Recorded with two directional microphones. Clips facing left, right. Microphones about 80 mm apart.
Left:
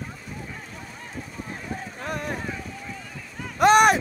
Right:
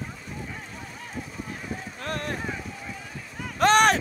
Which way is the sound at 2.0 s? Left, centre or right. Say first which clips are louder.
Left 1 dB; centre.